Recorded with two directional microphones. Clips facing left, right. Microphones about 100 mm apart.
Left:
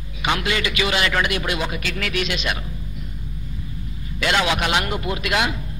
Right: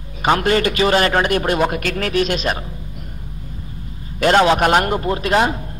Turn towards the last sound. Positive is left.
turn(degrees=-40)  # may be behind; listen again after turning